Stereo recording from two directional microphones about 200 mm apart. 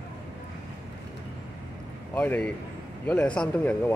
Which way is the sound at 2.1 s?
5° left (ahead or behind).